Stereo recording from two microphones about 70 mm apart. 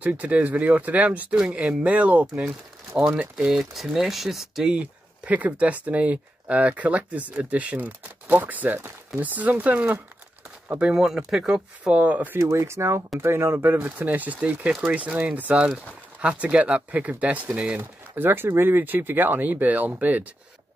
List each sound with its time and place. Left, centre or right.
0.0 s speech: right
1.3 s speech: centre
4.7 s speech: centre
11.8 s speech: right
12.4 s speech: right
13.7 s speech: right